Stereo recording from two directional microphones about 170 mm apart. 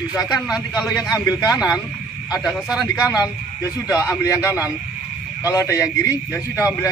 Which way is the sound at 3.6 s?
20° left (ahead or behind).